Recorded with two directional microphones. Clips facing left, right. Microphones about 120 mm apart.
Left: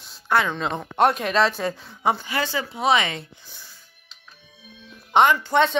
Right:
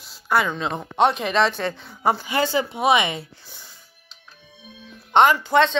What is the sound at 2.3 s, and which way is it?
Speech, 25° right (ahead or behind).